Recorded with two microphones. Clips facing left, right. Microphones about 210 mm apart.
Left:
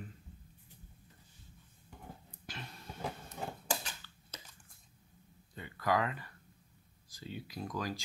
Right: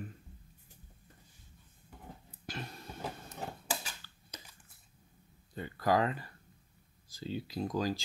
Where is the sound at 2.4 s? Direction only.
40° right (ahead or behind).